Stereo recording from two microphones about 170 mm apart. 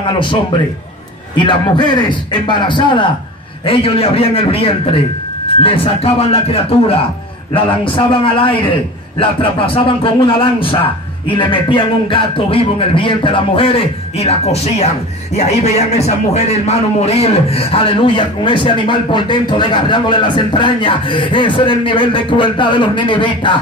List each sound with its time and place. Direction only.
1.3 s a man's voice: 30° left (ahead or behind)